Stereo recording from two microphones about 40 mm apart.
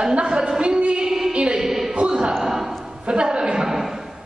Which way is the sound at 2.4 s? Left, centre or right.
Centre.